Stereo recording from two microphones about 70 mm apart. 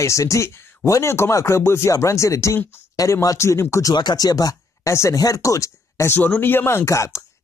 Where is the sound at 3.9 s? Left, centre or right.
Left.